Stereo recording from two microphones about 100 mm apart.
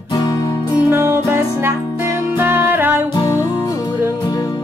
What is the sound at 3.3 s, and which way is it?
Music, 25° left (ahead or behind).